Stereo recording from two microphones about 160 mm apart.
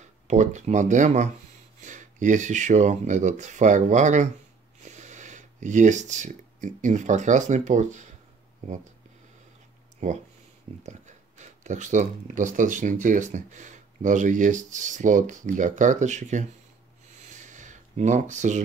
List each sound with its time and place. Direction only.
0.3 s speech: 45° right (ahead or behind)
10.0 s speech: 50° right (ahead or behind)
17.4 s a sound: 50° right (ahead or behind)